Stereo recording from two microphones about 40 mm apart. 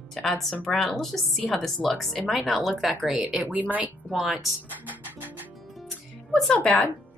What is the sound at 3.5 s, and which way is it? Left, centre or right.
Speech, right.